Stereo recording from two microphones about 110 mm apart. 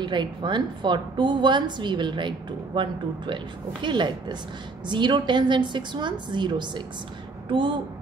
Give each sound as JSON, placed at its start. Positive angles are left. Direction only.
{"t": 0.0, "sound": "a woman's voice", "side_deg": -45}